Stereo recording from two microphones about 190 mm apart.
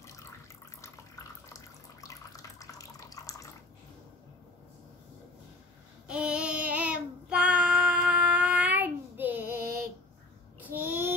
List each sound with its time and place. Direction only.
0.7 s water: 15° left (ahead or behind)
1.5 s water tap: 20° left (ahead or behind)
6.0 s child singing: 5° right (ahead or behind)
9.6 s female singing: 50° right (ahead or behind)
10.6 s child singing: 10° right (ahead or behind)